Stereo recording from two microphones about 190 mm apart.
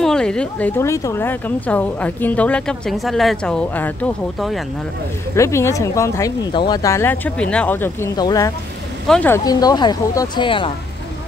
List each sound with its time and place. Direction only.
0.0 s a woman's voice: 5° left (ahead or behind)
5.3 s a woman's voice: 15° left (ahead or behind)
9.0 s speech: 5° left (ahead or behind)
9.4 s speech: 20° left (ahead or behind)